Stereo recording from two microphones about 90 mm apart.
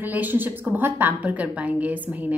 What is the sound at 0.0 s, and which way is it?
A woman's voice, 20° right (ahead or behind).